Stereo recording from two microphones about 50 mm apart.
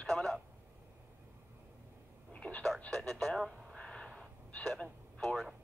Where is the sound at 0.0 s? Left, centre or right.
Centre.